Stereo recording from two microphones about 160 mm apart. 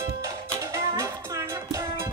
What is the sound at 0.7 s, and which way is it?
Music, 15° right (ahead or behind).